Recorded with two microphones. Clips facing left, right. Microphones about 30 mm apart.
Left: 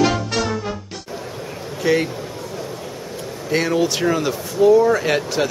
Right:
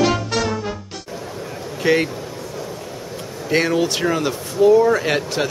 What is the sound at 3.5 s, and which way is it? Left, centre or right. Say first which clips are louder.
Speech: right 1 dB; centre.